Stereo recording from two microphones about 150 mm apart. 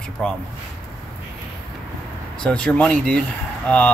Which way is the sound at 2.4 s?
5° left (ahead or behind).